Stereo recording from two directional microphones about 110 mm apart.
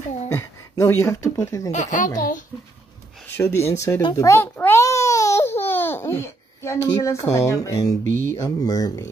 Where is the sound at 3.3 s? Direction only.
25° left (ahead or behind).